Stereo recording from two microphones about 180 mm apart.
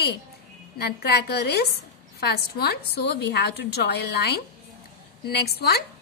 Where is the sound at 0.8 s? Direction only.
65° left (ahead or behind).